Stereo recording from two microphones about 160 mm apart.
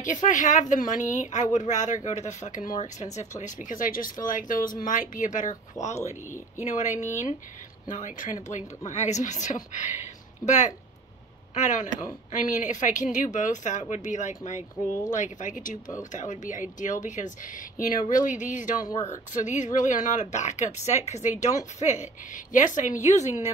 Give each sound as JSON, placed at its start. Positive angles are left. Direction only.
{"t": 0.0, "sound": "speech", "side_deg": 50}